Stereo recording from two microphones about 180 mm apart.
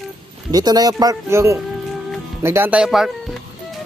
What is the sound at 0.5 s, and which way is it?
Speech, 20° right (ahead or behind).